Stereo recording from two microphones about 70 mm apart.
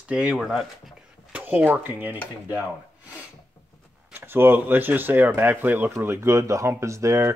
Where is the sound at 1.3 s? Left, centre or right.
Right.